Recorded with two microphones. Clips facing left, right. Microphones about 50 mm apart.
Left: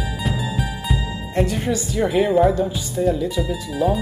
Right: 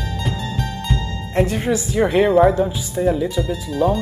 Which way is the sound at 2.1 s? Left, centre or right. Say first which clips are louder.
Right 3 dB; centre.